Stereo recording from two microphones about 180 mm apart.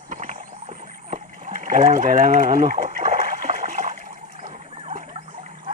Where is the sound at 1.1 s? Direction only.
45° right (ahead or behind).